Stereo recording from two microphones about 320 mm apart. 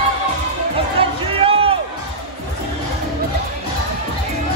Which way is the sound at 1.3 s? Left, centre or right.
Centre.